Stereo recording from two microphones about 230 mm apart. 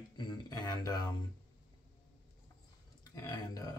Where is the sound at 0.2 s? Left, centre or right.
Centre.